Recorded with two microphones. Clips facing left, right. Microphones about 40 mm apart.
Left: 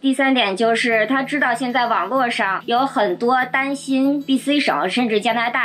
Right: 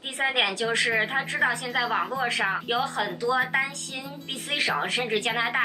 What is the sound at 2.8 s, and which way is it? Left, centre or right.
Speech, left.